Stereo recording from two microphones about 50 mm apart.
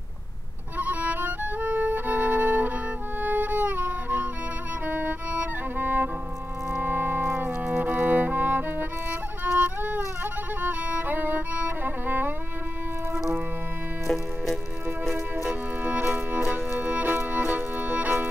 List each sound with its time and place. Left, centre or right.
0.7 s violin: right
3.2 s music: right
14.0 s music: centre
16.3 s music: right